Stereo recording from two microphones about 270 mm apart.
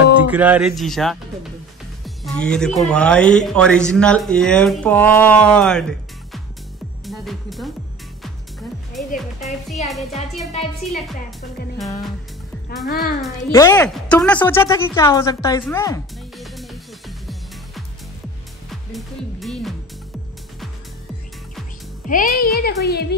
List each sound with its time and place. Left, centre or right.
0.3 s speech: centre
12.8 s a child's voice: left
13.5 s speech: centre
16.3 s music: centre
18.7 s music: centre
22.0 s a child's voice: left